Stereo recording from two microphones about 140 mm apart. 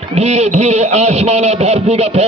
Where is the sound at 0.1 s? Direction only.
50° right (ahead or behind).